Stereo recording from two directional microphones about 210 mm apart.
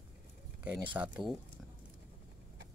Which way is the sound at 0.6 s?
5° right (ahead or behind).